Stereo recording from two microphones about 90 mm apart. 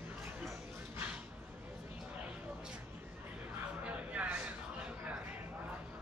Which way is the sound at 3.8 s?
15° right (ahead or behind).